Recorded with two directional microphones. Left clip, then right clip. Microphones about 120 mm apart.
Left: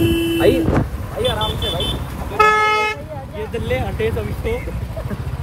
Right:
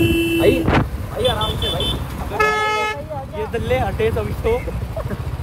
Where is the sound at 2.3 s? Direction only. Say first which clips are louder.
Left 4 dB; 40° left (ahead or behind).